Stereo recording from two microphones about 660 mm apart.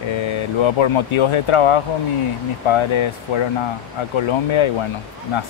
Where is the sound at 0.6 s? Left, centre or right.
Left.